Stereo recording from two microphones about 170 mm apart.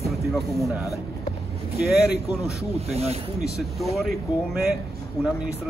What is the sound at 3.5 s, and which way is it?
Speech, centre (ahead or behind).